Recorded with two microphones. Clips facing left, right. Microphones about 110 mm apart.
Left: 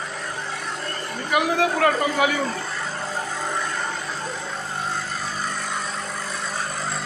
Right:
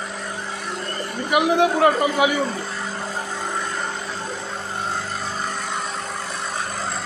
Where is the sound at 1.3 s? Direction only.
20° right (ahead or behind).